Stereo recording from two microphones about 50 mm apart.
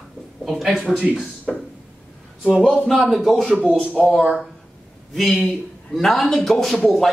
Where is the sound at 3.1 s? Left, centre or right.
Centre.